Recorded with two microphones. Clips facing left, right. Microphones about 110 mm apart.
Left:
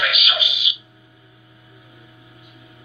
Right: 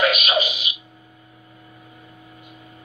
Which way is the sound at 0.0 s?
40° right (ahead or behind).